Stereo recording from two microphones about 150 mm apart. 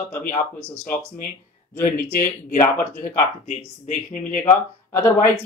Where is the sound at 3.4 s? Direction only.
55° left (ahead or behind).